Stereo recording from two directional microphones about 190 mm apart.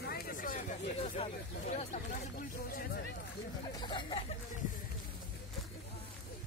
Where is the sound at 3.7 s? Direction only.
25° left (ahead or behind).